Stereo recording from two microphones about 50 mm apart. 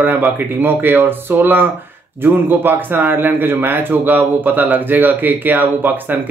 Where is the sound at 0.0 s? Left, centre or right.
Right.